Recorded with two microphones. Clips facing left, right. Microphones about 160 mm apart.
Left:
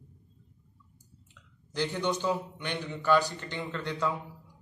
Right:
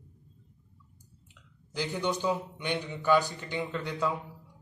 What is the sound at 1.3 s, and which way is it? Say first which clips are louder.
A man's voice: left 2 dB; 5° right (ahead or behind).